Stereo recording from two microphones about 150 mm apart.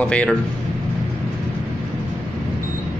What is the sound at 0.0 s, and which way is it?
Speech, 10° left (ahead or behind).